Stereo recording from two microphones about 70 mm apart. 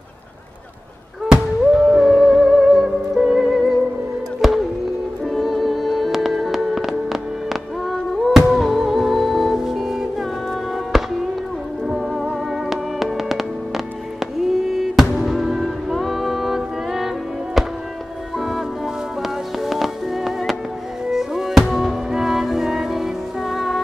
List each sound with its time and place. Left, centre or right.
1.7 s music: centre